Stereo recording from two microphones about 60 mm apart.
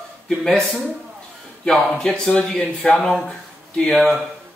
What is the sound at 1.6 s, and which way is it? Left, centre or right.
Speech, centre.